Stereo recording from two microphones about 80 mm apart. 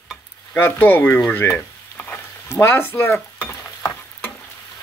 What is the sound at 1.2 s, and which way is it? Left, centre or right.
Frying, left.